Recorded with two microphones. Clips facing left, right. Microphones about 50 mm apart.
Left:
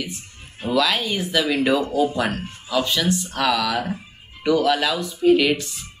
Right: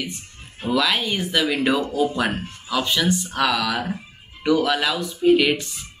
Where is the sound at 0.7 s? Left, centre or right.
Centre.